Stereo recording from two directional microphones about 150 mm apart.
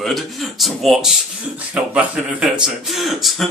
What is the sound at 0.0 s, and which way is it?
A man's voice, centre (ahead or behind).